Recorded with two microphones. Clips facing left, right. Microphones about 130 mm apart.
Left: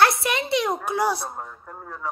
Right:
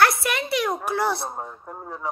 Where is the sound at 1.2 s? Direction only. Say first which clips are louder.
Right 2 dB; 20° right (ahead or behind).